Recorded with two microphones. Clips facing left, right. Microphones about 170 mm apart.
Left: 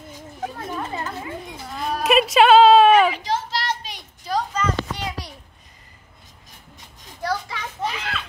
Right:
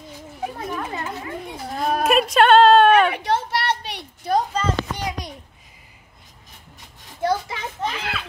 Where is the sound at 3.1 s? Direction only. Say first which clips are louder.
Right 2 dB; 60° right (ahead or behind).